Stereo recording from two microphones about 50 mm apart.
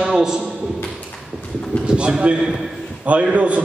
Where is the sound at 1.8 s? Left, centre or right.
Right.